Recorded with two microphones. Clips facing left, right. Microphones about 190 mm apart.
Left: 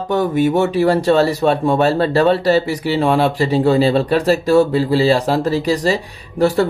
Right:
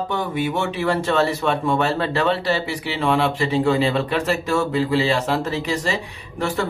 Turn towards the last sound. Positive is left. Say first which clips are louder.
# left 9 dB
turn(degrees=35)  # may be behind; listen again after turning